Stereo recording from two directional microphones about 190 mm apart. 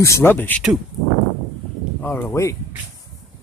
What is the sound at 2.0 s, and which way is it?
Speech, 10° left (ahead or behind).